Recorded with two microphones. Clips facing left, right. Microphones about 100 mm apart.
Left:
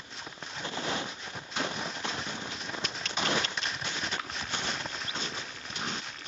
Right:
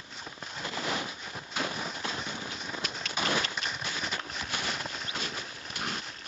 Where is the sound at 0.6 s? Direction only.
25° left (ahead or behind).